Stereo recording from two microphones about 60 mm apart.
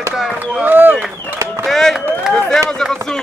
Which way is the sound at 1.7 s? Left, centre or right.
Centre.